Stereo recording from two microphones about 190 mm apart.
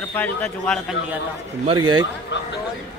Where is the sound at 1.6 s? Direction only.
25° right (ahead or behind).